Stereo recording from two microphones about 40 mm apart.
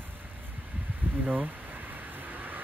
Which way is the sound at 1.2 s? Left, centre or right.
Right.